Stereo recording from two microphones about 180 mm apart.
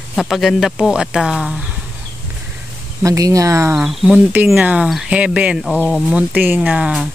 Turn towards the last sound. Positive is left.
turn(degrees=-5)  # may be behind; listen again after turning